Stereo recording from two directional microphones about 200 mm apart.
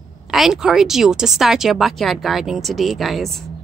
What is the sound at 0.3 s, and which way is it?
Speech, centre (ahead or behind).